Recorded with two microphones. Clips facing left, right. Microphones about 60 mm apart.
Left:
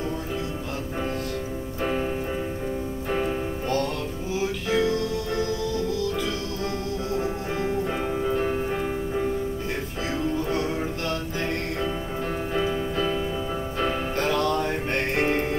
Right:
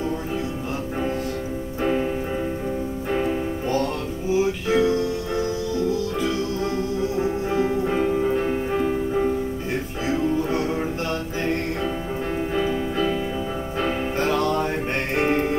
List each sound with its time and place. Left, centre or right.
1.8 s music: centre
3.1 s music: centre
4.6 s music: right
7.5 s music: centre
8.5 s music: centre
10.0 s music: centre
13.7 s music: centre